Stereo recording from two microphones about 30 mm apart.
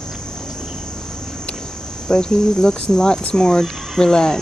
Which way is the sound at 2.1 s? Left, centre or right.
Left.